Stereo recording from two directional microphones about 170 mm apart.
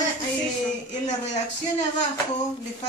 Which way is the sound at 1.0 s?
45° left (ahead or behind).